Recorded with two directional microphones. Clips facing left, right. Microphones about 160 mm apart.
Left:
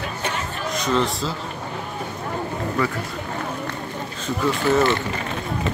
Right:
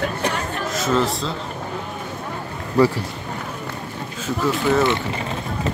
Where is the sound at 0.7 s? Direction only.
5° right (ahead or behind).